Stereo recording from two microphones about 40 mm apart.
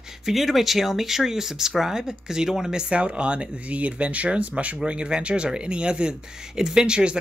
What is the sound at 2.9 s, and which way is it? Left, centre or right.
Speech, right.